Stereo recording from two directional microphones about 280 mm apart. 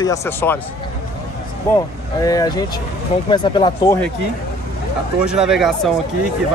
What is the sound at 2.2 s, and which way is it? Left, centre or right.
Speech, centre.